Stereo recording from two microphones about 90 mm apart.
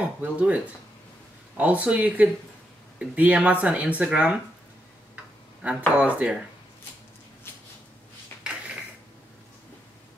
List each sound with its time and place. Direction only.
0.0 s speech: 15° right (ahead or behind)
1.6 s speech: 15° right (ahead or behind)
5.1 s tick-tock: 15° right (ahead or behind)
5.9 s speech: 15° right (ahead or behind)